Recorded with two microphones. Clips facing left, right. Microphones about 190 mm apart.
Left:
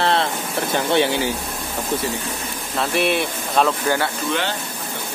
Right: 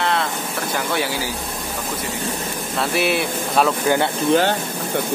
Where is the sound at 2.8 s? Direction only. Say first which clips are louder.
Even; centre (ahead or behind).